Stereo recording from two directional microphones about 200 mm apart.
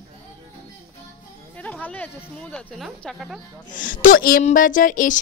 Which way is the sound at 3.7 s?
40° left (ahead or behind).